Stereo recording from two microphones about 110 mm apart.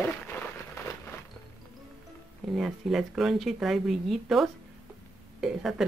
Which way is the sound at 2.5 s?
5° right (ahead or behind).